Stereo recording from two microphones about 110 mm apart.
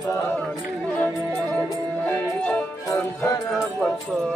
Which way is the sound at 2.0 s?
15° left (ahead or behind).